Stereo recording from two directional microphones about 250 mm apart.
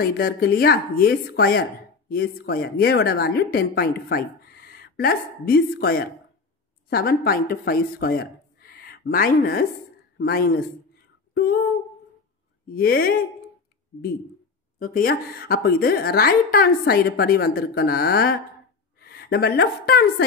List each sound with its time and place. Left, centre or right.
0.0 s speech: left
12.7 s speech: left
14.8 s a woman's voice: left